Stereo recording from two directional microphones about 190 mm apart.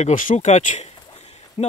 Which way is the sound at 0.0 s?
45° left (ahead or behind).